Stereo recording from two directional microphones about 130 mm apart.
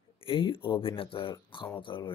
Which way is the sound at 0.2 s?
45° left (ahead or behind).